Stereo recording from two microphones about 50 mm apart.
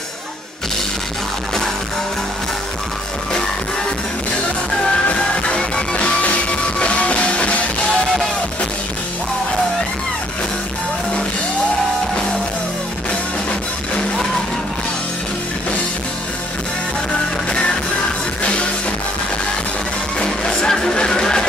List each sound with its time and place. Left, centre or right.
5.1 s music: centre
20.2 s music: centre